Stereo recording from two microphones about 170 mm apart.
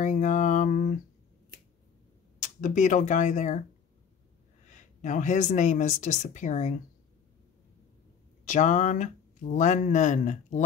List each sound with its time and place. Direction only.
0.0 s speech: 50° left (ahead or behind)
2.4 s speech: 50° left (ahead or behind)
4.6 s speech: 45° left (ahead or behind)
8.5 s speech: 45° left (ahead or behind)